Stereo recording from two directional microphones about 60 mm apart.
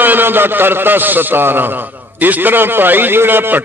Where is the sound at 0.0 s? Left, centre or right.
Right.